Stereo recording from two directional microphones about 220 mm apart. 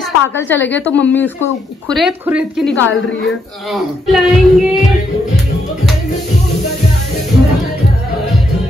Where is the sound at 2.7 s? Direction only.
55° left (ahead or behind).